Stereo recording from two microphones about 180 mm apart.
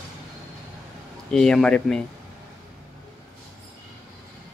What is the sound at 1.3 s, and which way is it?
Speech, 5° left (ahead or behind).